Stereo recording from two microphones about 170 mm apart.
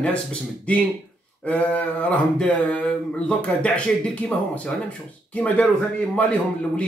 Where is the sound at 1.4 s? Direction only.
10° left (ahead or behind).